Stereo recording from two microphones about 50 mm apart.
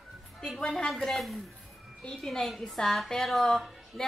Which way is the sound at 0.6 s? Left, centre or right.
Centre.